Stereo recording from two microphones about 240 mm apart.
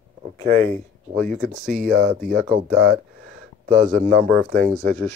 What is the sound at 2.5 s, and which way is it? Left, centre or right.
Speech, right.